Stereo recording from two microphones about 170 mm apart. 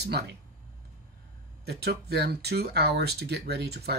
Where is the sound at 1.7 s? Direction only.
70° right (ahead or behind).